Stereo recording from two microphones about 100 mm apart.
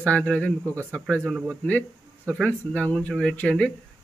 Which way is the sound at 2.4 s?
15° left (ahead or behind).